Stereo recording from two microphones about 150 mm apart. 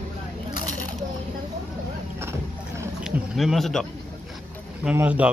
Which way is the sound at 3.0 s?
Centre (ahead or behind).